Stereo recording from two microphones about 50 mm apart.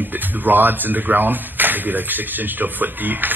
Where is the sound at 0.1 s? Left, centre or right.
Right.